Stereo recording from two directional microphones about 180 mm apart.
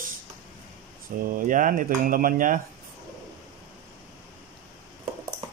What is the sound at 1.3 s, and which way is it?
Speech, 50° right (ahead or behind).